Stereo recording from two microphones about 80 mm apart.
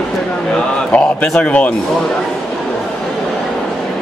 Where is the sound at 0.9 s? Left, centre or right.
Centre.